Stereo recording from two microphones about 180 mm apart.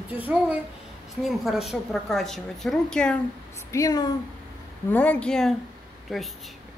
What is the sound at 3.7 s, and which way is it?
Speech, 20° left (ahead or behind).